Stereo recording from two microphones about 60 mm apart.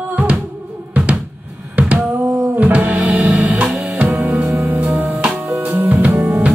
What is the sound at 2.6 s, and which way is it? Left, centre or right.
Music, right.